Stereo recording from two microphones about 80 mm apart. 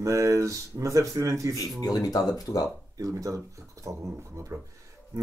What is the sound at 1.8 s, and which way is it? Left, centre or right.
Speech, left.